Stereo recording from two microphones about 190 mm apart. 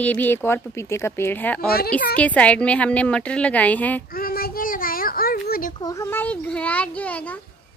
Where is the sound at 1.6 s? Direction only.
55° left (ahead or behind).